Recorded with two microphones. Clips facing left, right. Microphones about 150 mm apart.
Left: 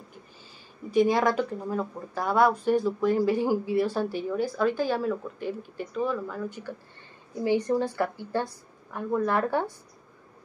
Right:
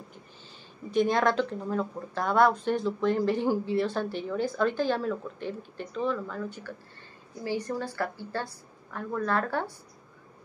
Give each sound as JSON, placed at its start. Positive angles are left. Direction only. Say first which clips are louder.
{"t": 0.9, "sound": "a woman's voice", "louder": "left 2 dB", "side_deg": 10}